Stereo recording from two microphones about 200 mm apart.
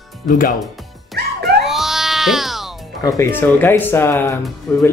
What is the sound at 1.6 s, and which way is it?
Music, centre (ahead or behind).